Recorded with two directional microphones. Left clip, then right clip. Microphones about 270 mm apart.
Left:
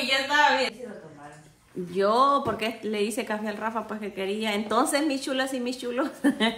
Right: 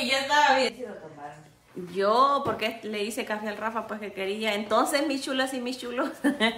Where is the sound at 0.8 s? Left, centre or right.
Right.